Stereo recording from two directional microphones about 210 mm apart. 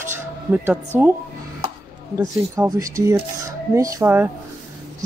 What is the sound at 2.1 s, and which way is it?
A woman's voice, 15° right (ahead or behind).